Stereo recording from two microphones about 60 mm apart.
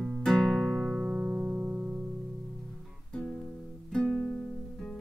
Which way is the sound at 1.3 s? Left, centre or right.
Right.